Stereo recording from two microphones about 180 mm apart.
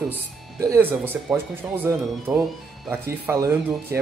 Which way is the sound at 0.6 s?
15° right (ahead or behind).